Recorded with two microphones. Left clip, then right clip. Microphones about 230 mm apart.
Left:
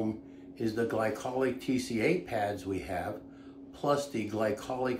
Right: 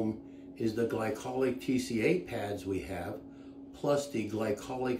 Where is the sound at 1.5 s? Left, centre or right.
Left.